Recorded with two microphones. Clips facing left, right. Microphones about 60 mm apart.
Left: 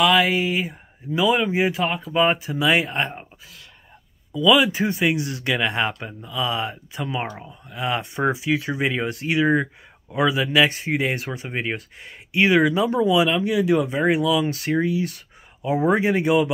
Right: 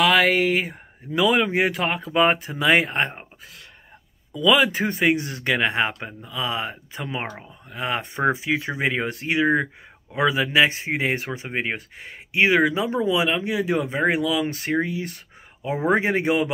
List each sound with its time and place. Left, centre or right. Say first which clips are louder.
0.0 s speech: even; right
2.5 s speech: right 1 dB; right
4.3 s speech: left 1 dB; right
5.7 s speech: even; right
7.2 s speech: left 1 dB; centre
7.7 s speech: left 1 dB; right